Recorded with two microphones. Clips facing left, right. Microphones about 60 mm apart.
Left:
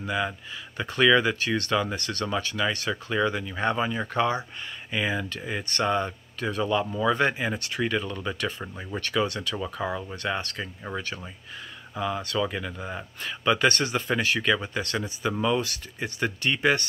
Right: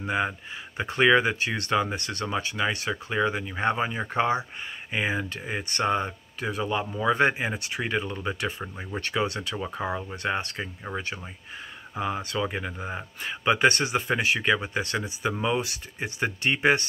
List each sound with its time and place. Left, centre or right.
0.0 s speech: right
11.9 s speech: right